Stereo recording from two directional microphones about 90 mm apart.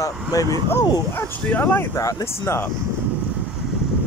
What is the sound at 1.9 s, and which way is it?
Speech, 40° left (ahead or behind).